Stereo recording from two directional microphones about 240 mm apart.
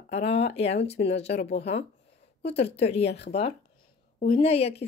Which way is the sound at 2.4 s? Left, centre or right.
Left.